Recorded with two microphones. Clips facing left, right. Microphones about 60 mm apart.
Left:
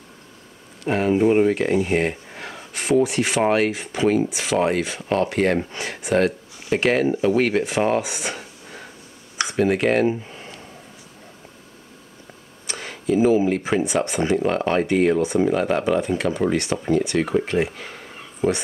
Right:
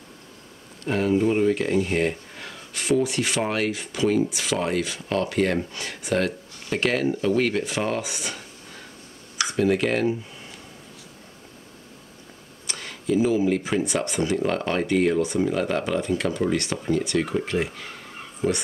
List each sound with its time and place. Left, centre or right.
0.8 s speech: left
4.3 s speech: left
10.0 s a sound: left
12.6 s speech: left
14.4 s speech: centre
15.1 s speech: left